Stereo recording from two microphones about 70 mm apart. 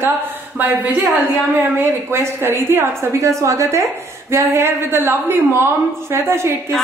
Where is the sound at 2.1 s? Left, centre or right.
Right.